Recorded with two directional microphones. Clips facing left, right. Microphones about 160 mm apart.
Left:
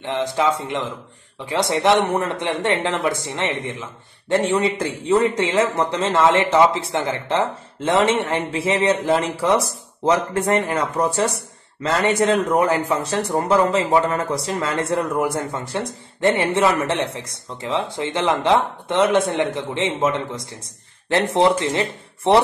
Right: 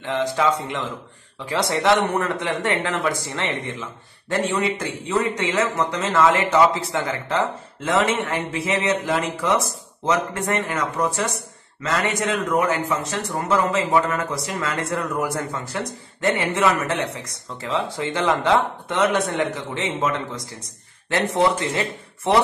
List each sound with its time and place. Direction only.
0.0 s a man's voice: 20° left (ahead or behind)